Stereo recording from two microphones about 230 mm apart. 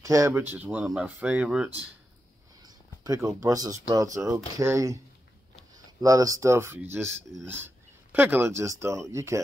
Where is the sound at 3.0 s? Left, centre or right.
Centre.